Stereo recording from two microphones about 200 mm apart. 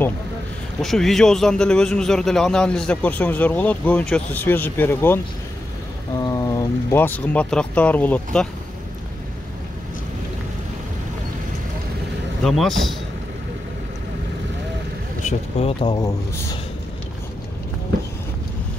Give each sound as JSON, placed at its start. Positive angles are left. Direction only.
{"t": 0.7, "sound": "a man's voice", "side_deg": 0}
{"t": 6.2, "sound": "speech", "side_deg": 15}
{"t": 12.4, "sound": "a man's voice", "side_deg": 0}
{"t": 15.2, "sound": "speech", "side_deg": 25}